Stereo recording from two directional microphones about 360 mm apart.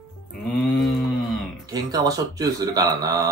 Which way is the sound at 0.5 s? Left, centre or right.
Centre.